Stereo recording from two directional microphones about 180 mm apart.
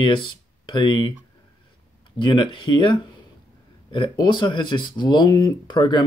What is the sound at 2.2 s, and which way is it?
Speech, 25° left (ahead or behind).